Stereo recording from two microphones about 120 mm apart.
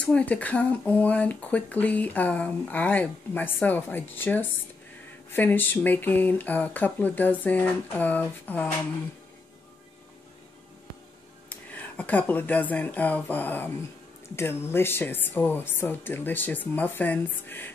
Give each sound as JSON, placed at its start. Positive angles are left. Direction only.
{"t": 0.0, "sound": "speech", "side_deg": 10}
{"t": 11.4, "sound": "speech", "side_deg": 15}